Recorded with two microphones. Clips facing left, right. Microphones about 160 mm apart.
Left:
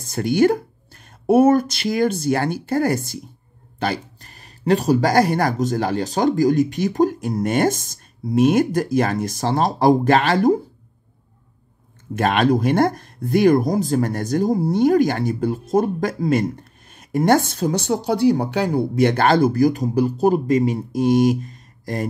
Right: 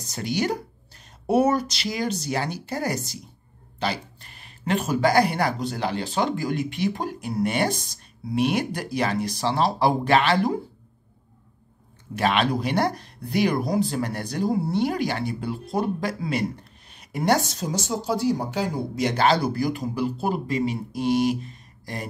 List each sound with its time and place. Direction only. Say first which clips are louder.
0.0 s speech: left 10 dB; 50° left (ahead or behind)
12.1 s speech: left 5 dB; 45° left (ahead or behind)